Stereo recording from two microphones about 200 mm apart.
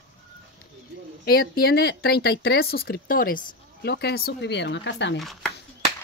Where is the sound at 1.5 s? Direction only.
50° left (ahead or behind).